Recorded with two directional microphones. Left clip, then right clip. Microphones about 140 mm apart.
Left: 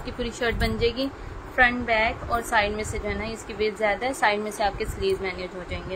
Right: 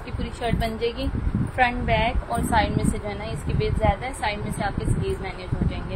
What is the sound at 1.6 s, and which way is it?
A woman's voice, 10° left (ahead or behind).